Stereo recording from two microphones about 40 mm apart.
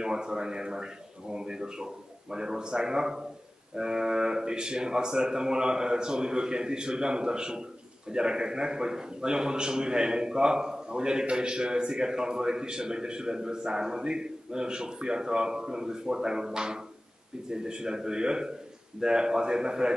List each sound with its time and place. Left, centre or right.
0.0 s a man's voice: centre